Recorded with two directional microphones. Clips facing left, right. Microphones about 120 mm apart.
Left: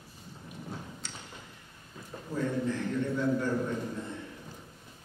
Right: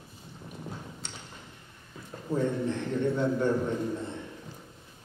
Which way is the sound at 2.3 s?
25° right (ahead or behind).